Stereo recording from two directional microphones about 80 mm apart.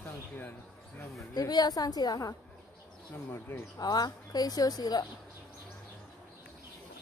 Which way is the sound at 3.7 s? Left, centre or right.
Left.